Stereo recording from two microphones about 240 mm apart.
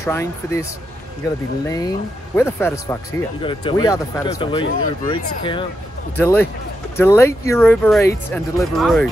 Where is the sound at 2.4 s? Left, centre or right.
Centre.